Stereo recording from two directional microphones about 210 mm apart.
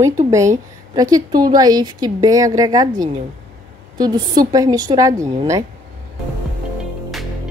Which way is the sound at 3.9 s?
20° right (ahead or behind).